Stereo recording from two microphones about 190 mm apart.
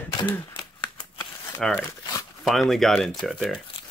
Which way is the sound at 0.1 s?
25° left (ahead or behind).